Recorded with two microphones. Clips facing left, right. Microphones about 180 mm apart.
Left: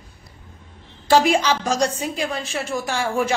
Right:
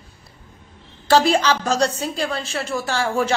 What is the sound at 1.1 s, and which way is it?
Speech, 10° left (ahead or behind).